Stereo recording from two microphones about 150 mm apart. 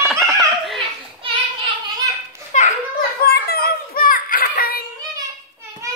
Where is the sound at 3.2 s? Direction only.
90° left.